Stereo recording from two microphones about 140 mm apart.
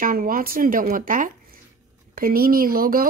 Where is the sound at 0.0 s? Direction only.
80° right.